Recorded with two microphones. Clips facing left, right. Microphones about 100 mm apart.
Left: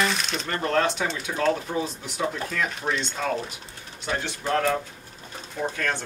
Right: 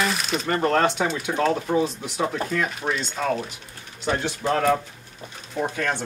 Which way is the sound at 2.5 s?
5° right (ahead or behind).